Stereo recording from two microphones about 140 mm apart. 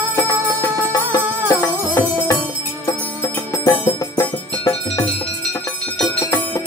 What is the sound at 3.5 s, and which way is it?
Music, 25° left (ahead or behind).